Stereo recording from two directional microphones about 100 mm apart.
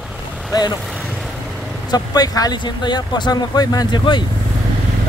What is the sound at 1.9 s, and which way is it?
Speech, 40° left (ahead or behind).